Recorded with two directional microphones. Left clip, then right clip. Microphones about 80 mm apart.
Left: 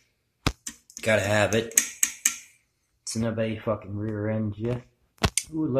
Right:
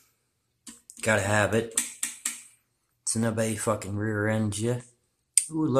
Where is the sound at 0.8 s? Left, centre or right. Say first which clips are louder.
Left 2 dB; centre.